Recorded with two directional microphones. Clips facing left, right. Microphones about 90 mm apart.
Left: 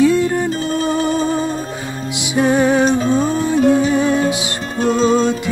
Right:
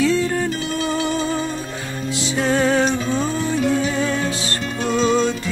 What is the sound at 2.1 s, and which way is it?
Music, 15° left (ahead or behind).